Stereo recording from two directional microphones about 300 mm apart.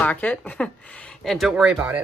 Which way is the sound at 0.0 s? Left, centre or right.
Centre.